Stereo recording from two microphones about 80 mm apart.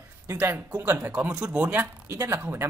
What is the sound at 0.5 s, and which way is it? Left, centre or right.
Speech, right.